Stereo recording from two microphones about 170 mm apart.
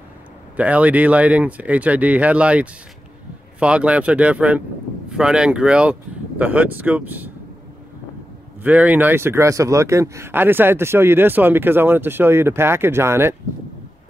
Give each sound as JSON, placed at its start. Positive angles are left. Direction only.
{"t": 0.6, "sound": "speech", "side_deg": -10}
{"t": 8.6, "sound": "speech", "side_deg": -10}